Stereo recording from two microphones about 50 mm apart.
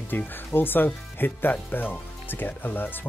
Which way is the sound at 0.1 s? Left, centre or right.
Left.